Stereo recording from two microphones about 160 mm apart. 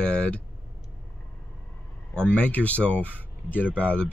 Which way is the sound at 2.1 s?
10° left (ahead or behind).